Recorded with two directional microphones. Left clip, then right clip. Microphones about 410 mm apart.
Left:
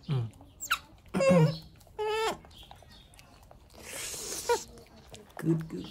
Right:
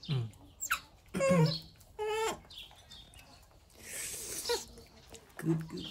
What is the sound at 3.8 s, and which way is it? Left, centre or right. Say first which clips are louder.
Wheeze: left 4 dB; centre.